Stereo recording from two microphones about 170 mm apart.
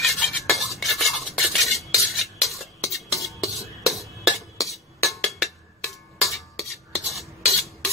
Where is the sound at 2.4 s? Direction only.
Centre (ahead or behind).